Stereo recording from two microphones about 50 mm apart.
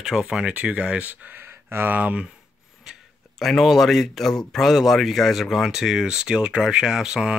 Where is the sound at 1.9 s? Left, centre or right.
Right.